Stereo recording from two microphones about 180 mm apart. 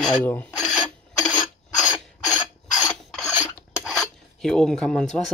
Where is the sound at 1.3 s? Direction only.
25° left (ahead or behind).